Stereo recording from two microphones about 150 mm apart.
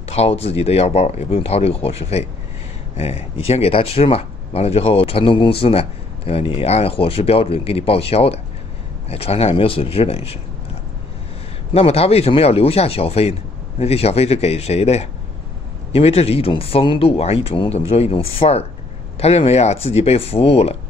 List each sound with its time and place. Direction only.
0.1 s speech: 45° left (ahead or behind)
11.7 s speech: 45° left (ahead or behind)